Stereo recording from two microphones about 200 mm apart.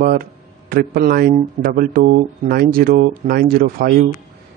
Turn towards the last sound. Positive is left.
turn(degrees=-50)  # may be behind; listen again after turning